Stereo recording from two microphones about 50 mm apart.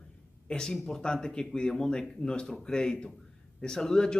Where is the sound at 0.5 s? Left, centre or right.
Centre.